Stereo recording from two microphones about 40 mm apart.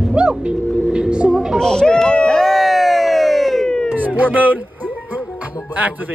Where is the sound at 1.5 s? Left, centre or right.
Centre.